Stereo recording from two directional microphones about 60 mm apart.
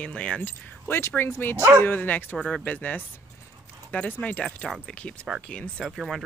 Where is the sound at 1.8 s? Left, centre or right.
Left.